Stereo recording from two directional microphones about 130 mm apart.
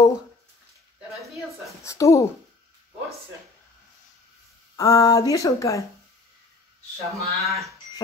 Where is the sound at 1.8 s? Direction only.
25° left (ahead or behind).